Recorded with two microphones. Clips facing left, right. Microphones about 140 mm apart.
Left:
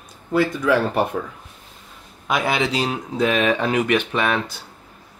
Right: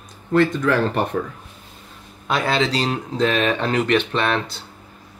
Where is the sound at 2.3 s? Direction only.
10° left (ahead or behind).